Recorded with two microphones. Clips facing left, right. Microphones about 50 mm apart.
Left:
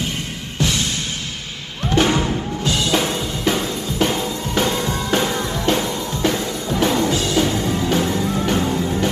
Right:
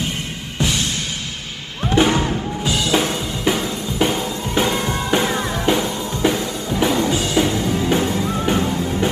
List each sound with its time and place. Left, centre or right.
1.9 s music: centre
7.5 s music: left
7.8 s music: right